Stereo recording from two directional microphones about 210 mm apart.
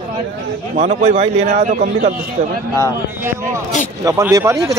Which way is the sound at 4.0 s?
15° right (ahead or behind).